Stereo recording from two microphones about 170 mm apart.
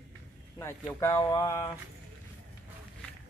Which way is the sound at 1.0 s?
20° left (ahead or behind).